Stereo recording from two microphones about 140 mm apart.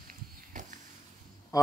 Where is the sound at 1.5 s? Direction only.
20° left (ahead or behind).